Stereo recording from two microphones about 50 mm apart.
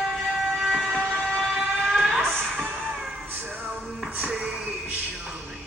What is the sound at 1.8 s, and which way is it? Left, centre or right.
Music, centre.